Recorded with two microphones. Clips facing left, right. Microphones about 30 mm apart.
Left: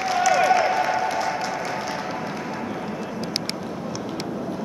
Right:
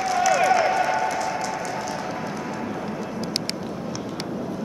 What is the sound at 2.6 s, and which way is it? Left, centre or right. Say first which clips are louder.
Run: even; centre.